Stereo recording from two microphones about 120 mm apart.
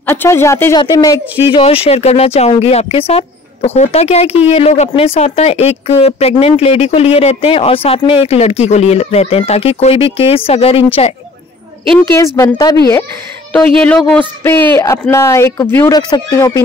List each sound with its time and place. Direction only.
0.0 s speech: 20° left (ahead or behind)
0.7 s speech: 35° left (ahead or behind)
1.5 s speech: 50° left (ahead or behind)
12.5 s speech: 30° left (ahead or behind)
13.7 s speech: 5° left (ahead or behind)
15.9 s speech: 35° left (ahead or behind)